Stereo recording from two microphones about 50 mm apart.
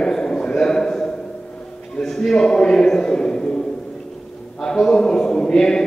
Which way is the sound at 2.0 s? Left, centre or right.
Centre.